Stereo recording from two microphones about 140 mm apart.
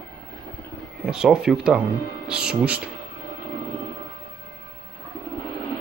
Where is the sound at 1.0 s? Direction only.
5° right (ahead or behind).